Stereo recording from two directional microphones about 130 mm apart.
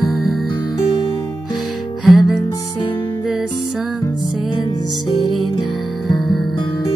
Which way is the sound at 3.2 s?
5° right (ahead or behind).